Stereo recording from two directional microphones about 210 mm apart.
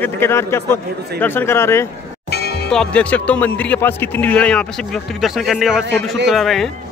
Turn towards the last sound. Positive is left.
turn(degrees=0)  # may be behind; listen again after turning